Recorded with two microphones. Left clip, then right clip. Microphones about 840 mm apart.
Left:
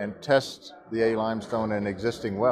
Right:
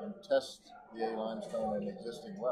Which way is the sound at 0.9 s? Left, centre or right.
Left.